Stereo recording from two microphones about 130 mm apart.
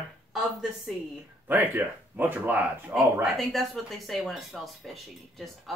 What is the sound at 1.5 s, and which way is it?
Speech, 15° right (ahead or behind).